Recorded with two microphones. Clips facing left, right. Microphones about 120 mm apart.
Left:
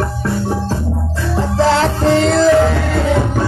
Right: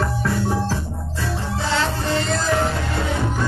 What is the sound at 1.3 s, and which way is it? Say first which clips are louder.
Music: left 11 dB; 90° left.